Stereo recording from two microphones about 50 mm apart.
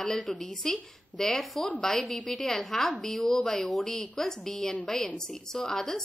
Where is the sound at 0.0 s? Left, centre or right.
Centre.